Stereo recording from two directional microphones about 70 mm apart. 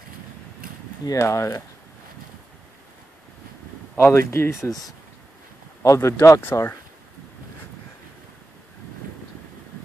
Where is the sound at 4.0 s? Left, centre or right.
Left.